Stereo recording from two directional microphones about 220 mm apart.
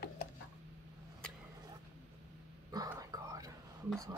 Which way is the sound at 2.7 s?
15° right (ahead or behind).